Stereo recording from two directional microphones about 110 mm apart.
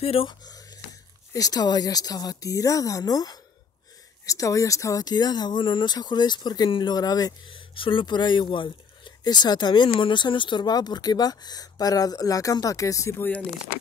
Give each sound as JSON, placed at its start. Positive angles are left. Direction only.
{"t": 0.0, "sound": "speech", "side_deg": 60}
{"t": 0.3, "sound": "speech", "side_deg": 35}